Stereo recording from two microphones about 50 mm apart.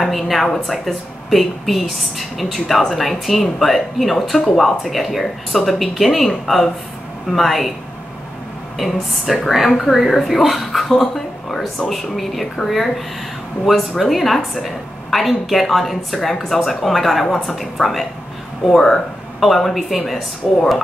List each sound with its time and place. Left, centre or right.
0.0 s a woman's voice: centre
8.7 s a woman's voice: centre